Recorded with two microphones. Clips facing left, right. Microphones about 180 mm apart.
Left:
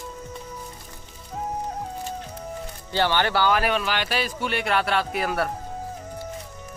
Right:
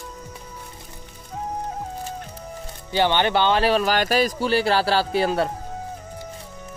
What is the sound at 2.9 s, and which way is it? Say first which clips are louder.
Speech: right 3 dB; 20° right (ahead or behind).